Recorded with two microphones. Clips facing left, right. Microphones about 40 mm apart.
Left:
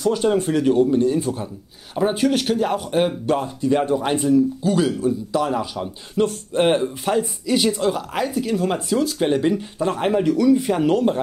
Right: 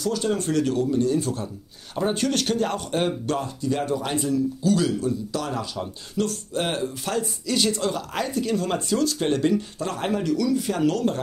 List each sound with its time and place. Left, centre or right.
0.0 s speech: left